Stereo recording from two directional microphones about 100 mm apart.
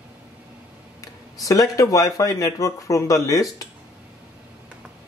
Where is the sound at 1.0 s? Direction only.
35° left (ahead or behind).